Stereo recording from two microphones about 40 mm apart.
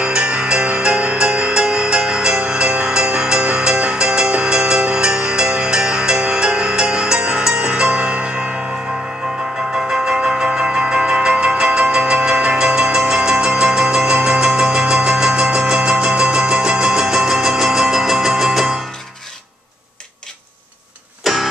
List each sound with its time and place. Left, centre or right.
0.0 s music: right
9.8 s music: centre
15.2 s a sound: centre
16.9 s music: centre
21.2 s music: centre